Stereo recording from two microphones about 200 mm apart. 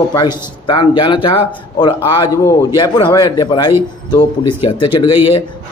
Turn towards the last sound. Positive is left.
turn(degrees=25)  # may be behind; listen again after turning